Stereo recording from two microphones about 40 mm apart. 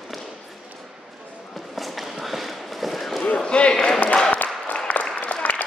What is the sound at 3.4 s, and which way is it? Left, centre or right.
Basketball bounce, left.